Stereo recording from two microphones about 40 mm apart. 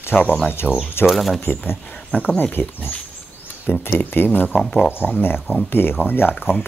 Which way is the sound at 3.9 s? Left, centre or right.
Left.